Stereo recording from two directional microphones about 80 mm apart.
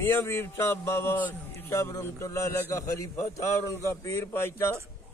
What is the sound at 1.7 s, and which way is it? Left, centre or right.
A man's voice, left.